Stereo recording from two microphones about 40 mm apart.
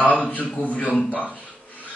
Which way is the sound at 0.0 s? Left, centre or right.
Left.